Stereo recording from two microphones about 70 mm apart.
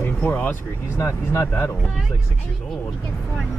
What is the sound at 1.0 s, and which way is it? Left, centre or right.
Speech, left.